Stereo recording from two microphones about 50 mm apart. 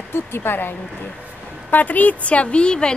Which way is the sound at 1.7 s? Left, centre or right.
Left.